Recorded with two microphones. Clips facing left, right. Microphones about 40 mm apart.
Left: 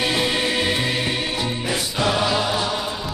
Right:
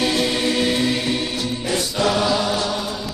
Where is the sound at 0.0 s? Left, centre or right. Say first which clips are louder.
Right 1 dB; centre.